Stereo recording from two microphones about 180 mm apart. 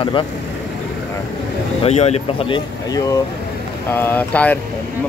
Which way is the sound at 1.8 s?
35° left (ahead or behind).